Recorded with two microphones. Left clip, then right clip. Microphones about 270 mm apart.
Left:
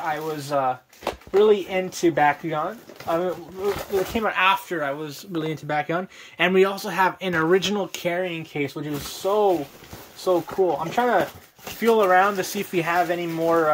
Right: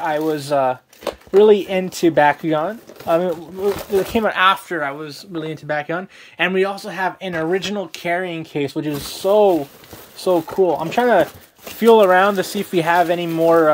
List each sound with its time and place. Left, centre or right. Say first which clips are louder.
0.0 s speech: right 7 dB; right
4.7 s speech: right 3 dB; centre
8.2 s speech: right 3 dB; right